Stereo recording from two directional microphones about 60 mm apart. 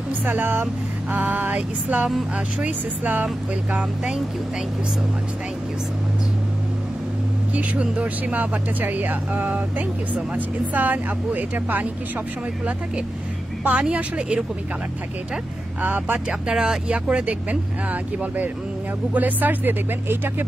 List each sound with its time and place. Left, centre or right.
0.2 s speech: right
3.7 s speech: centre
7.5 s speech: right
13.7 s speech: right
15.8 s speech: right
16.3 s speech: centre
18.2 s speech: right